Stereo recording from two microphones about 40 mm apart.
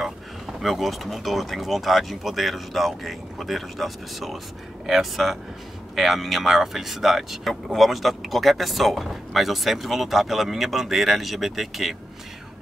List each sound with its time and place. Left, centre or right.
0.6 s speech: centre